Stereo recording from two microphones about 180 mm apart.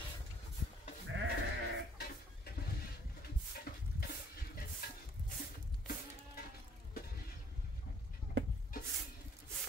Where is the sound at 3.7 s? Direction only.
60° left (ahead or behind).